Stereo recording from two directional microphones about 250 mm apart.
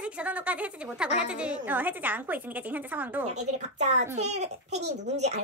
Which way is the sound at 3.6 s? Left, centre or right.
Right.